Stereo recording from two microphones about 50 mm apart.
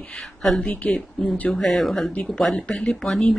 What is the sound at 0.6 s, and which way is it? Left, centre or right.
Speech, left.